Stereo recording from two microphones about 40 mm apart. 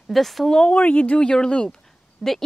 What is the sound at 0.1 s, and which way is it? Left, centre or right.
Speech, centre.